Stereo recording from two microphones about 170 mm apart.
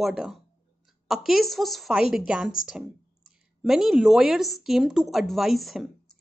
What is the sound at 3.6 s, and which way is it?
Speech, centre (ahead or behind).